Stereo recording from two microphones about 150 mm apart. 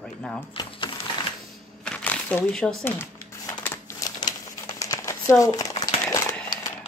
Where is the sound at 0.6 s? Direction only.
35° left (ahead or behind).